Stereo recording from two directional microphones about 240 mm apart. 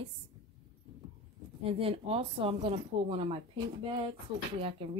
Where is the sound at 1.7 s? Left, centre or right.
Right.